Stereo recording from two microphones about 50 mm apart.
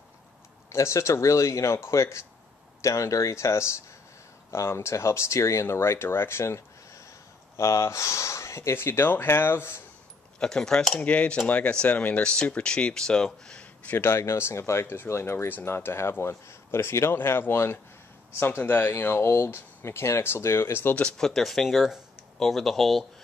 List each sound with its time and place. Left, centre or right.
0.7 s speech: left
7.5 s speech: left
8.7 s speech: left
10.4 s speech: centre
11.0 s speech: left
13.9 s speech: left
18.9 s speech: left
21.2 s speech: centre